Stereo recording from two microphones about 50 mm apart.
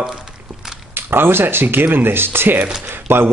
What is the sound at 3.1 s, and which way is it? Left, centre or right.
Speech, right.